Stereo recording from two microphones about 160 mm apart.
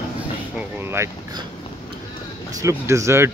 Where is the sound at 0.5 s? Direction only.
15° right (ahead or behind).